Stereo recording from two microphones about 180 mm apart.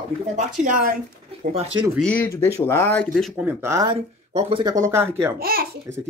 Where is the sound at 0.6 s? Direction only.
50° right (ahead or behind).